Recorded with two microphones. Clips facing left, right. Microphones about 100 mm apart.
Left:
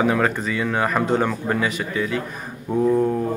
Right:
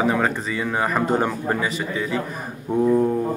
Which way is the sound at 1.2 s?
15° right (ahead or behind).